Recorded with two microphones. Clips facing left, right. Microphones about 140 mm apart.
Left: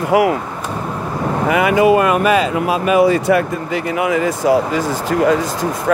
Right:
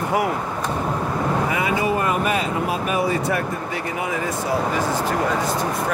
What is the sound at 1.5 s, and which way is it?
Speech, 75° left (ahead or behind).